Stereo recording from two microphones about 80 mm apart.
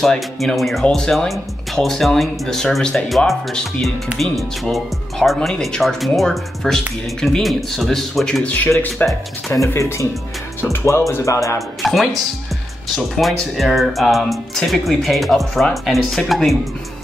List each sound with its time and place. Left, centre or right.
0.0 s speech: centre
9.0 s speech: left
11.8 s speech: centre